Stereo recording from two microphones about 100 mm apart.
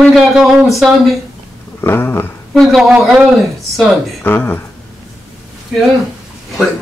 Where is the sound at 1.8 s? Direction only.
25° left (ahead or behind).